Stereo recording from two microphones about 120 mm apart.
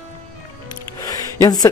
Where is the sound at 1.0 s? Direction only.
30° left (ahead or behind).